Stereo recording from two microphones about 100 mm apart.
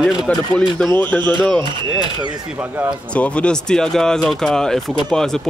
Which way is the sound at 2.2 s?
15° right (ahead or behind).